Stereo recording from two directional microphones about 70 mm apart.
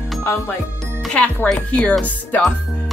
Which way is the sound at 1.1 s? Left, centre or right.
Centre.